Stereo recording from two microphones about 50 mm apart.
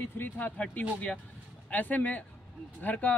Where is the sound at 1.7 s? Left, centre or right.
Left.